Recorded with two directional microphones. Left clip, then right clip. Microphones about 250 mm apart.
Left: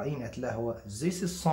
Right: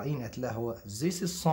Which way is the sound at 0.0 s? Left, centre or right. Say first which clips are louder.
Left 1 dB; right.